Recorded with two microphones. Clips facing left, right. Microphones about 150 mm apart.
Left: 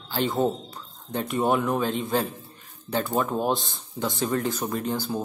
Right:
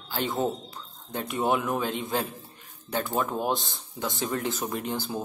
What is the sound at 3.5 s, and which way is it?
Speech, 20° left (ahead or behind).